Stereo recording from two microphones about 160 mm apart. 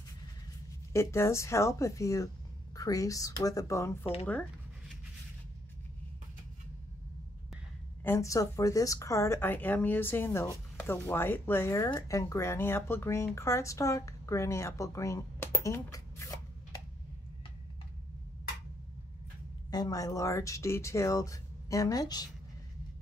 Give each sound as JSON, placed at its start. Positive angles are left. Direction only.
{"t": 0.9, "sound": "speech", "side_deg": 15}
{"t": 4.0, "sound": "speech", "side_deg": 35}
{"t": 8.0, "sound": "speech", "side_deg": 15}
{"t": 19.7, "sound": "speech", "side_deg": 25}